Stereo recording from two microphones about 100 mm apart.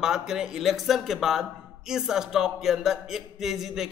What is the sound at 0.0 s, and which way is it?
A man's voice, 5° right (ahead or behind).